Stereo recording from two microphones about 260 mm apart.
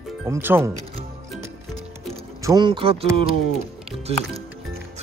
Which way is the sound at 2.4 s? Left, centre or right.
Centre.